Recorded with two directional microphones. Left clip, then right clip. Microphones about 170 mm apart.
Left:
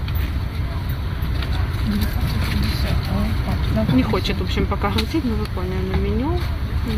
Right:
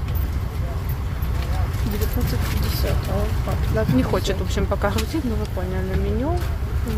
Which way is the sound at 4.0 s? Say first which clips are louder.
Left 1 dB; 5° right (ahead or behind).